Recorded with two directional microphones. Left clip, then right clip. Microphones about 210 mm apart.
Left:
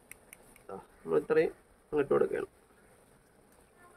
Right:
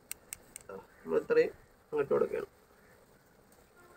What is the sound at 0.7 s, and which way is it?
Speech, 35° left (ahead or behind).